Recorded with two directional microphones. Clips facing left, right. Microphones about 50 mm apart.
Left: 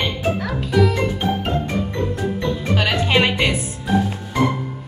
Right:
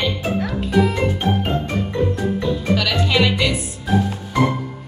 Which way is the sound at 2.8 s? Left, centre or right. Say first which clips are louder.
Left 4 dB; left.